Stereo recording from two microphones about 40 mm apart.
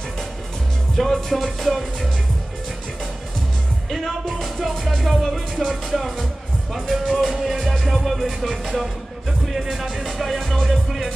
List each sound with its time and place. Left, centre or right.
0.9 s music: centre
3.9 s music: centre